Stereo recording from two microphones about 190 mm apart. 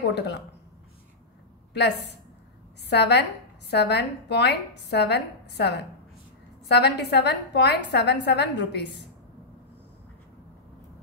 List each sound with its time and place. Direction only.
0.1 s a woman's voice: 60° left (ahead or behind)
1.7 s a woman's voice: 65° left (ahead or behind)